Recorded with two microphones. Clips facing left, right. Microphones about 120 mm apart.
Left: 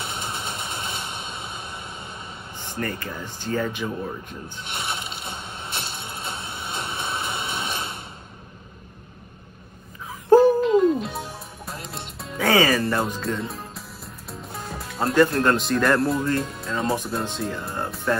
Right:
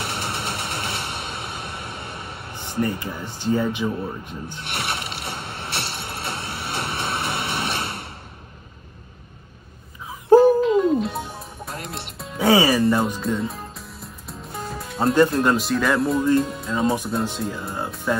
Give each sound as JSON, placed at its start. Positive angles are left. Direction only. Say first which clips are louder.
{"t": 0.0, "sound": "a sound", "louder": "right 3 dB", "side_deg": -65}
{"t": 2.8, "sound": "speech", "louder": "right 5 dB", "side_deg": -15}
{"t": 4.6, "sound": "music", "louder": "right 2 dB", "side_deg": -65}
{"t": 10.4, "sound": "music", "louder": "right 1 dB", "side_deg": 0}
{"t": 11.8, "sound": "music", "louder": "right 2 dB", "side_deg": -65}
{"t": 12.4, "sound": "music", "louder": "right 2 dB", "side_deg": -15}
{"t": 13.2, "sound": "music", "louder": "right 3 dB", "side_deg": 0}
{"t": 15.3, "sound": "speech", "louder": "right 1 dB", "side_deg": -5}